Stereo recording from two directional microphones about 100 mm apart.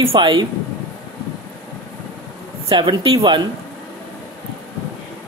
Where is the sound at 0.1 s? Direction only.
55° right (ahead or behind).